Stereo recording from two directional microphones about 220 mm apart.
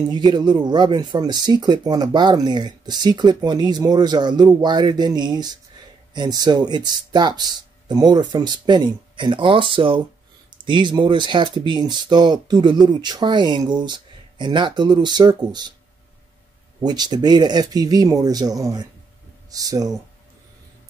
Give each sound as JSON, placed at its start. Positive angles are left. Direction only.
{"t": 0.1, "sound": "speech", "side_deg": -20}
{"t": 16.8, "sound": "speech", "side_deg": -20}